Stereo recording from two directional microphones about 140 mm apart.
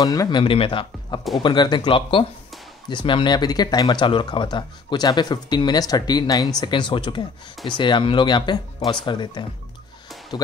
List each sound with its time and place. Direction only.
0.0 s speech: 25° left (ahead or behind)